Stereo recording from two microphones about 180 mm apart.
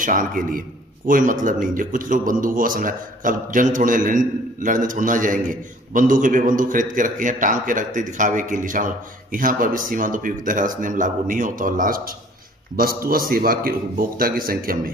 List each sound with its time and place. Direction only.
0.0 s a man's voice: 50° right (ahead or behind)